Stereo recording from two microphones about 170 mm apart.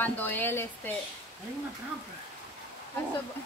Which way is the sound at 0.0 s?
10° left (ahead or behind).